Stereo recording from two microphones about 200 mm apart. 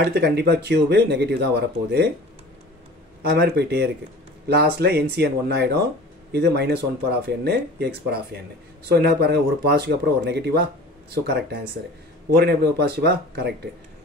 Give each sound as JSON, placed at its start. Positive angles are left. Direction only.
{"t": 0.0, "sound": "speech", "side_deg": -55}
{"t": 3.2, "sound": "speech", "side_deg": -55}
{"t": 12.4, "sound": "speech", "side_deg": -55}